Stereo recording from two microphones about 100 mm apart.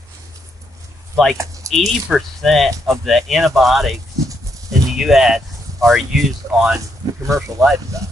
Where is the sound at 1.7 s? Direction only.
35° right (ahead or behind).